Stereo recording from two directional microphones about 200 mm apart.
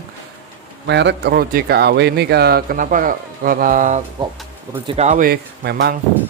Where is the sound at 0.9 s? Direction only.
60° right (ahead or behind); by 5.2 s 35° right (ahead or behind).